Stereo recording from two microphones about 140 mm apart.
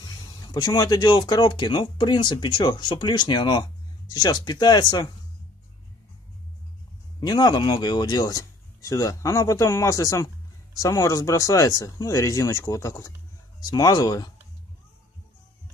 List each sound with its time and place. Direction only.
0.0 s speech: 30° left (ahead or behind)
7.2 s speech: 30° left (ahead or behind)